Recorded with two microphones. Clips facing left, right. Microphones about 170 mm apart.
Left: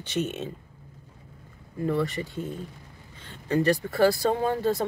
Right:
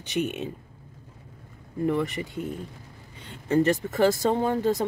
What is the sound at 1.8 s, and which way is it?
Speech, 15° right (ahead or behind).